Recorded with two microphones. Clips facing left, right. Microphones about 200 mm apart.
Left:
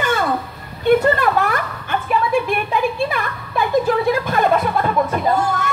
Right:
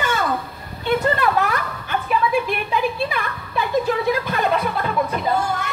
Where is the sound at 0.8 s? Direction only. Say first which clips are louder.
Left 5 dB; 45° left (ahead or behind).